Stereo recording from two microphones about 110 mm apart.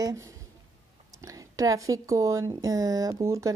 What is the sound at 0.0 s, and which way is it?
A woman's voice, 30° right (ahead or behind).